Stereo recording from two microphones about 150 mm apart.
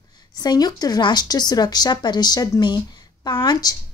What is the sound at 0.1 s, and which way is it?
A woman's voice, 25° left (ahead or behind).